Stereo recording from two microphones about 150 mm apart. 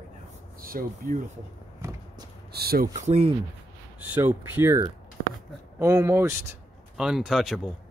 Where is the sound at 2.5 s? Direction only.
90° right.